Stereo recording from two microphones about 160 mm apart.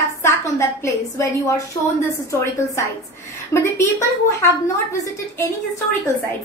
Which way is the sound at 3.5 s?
15° left (ahead or behind).